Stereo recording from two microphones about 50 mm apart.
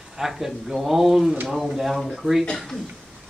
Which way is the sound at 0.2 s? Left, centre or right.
Centre.